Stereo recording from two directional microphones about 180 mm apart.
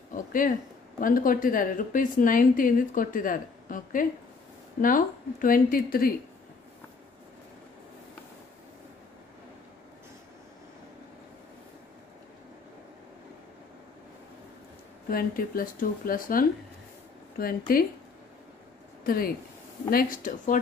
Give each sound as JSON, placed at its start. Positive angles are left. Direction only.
{"t": 0.1, "sound": "a woman's voice", "side_deg": 50}
{"t": 15.0, "sound": "a woman's voice", "side_deg": 55}
{"t": 19.0, "sound": "a woman's voice", "side_deg": 55}